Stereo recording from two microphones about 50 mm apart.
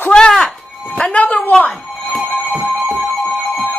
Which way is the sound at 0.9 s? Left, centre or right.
Left.